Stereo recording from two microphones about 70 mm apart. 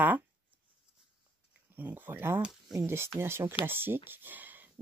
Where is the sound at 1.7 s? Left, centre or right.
Right.